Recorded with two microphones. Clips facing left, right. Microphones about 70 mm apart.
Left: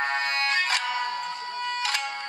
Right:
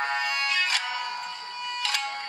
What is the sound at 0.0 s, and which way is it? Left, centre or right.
Music, left.